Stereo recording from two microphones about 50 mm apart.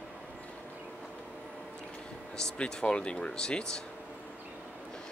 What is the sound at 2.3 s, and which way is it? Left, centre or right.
Speech, centre.